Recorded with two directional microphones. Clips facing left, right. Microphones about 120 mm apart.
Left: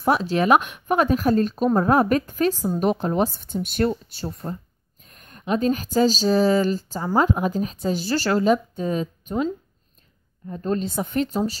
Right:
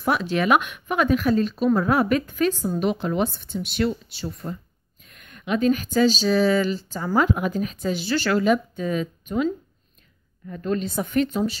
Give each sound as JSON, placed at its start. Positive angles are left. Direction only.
{"t": 0.0, "sound": "speech", "side_deg": 35}
{"t": 7.0, "sound": "speech", "side_deg": 30}